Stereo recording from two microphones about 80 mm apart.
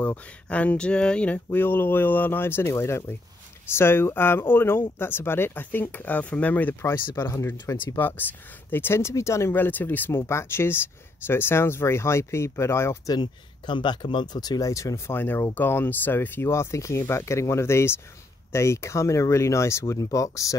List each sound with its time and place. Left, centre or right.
0.0 s speech: centre
7.2 s speech: left
8.0 s speech: left
13.2 s speech: left
15.1 s speech: left